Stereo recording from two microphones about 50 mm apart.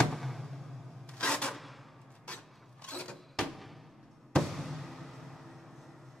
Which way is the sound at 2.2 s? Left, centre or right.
Left.